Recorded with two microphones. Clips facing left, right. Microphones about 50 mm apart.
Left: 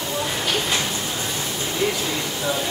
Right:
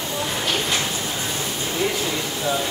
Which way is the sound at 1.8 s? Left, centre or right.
Centre.